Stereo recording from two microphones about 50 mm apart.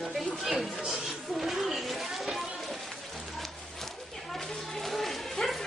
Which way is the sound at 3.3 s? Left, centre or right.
Centre.